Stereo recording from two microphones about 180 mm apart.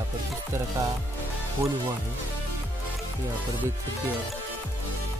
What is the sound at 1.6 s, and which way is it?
Speech, 15° right (ahead or behind).